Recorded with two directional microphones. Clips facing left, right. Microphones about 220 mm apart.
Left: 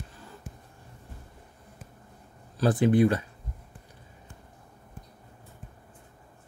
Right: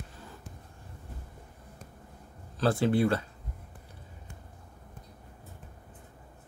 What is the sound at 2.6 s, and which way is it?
Speech, 15° left (ahead or behind).